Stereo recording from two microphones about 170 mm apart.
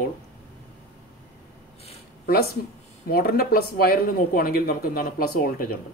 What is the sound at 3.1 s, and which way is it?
Speech, 65° left (ahead or behind).